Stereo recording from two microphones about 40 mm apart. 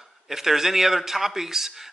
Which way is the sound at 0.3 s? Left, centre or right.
Centre.